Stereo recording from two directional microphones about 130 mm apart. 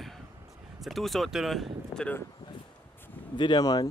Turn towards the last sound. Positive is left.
turn(degrees=30)  # may be behind; listen again after turning